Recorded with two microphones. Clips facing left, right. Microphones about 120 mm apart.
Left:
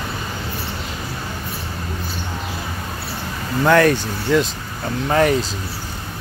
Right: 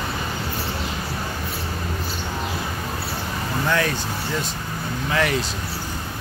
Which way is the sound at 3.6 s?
55° left (ahead or behind).